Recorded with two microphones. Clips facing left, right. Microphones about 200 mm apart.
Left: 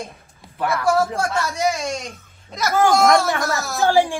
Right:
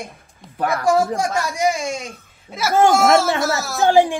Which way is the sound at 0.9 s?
15° right (ahead or behind).